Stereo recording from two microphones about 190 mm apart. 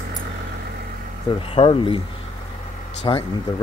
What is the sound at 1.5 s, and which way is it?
Speech, 25° left (ahead or behind).